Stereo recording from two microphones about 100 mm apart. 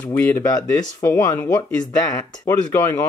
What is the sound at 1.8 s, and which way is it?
Speech, 40° left (ahead or behind).